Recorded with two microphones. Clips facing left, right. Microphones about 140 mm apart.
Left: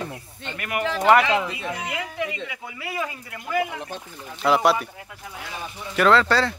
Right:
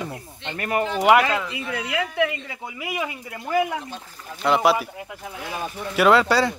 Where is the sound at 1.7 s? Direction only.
85° right.